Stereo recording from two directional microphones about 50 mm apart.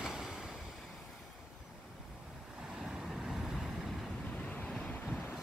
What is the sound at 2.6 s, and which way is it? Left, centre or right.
Vehicle, centre.